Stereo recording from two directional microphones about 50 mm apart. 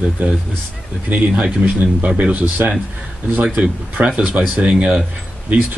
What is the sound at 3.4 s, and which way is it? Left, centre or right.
Speech, right.